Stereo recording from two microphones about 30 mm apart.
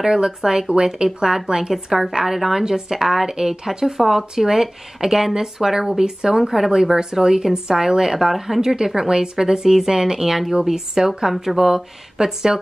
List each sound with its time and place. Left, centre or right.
0.0 s a woman's voice: centre
8.5 s a woman's voice: centre
10.7 s a woman's voice: centre